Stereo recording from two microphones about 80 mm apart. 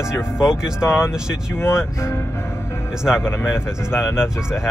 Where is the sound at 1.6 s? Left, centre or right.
Left.